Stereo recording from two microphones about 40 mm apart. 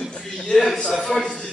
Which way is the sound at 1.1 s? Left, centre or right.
Centre.